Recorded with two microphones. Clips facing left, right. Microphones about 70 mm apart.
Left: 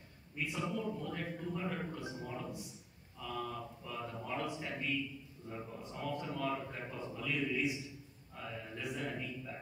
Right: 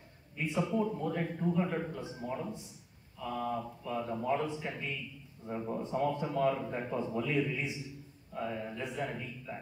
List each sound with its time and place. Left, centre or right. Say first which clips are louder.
0.6 s a man's voice: right 8 dB; right
8.4 s mantra: right 7 dB; right